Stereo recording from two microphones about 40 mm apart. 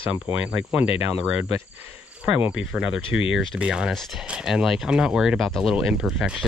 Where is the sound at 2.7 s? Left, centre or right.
Centre.